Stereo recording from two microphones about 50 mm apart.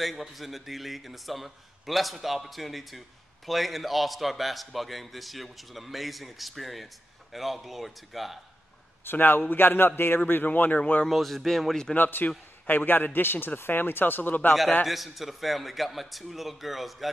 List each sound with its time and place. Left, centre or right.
0.2 s a man's voice: centre
9.0 s a man's voice: left
11.1 s a man's voice: centre
11.9 s a man's voice: left
14.9 s a man's voice: centre